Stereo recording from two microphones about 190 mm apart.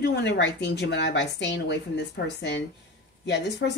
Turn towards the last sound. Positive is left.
turn(degrees=65)  # may be behind; listen again after turning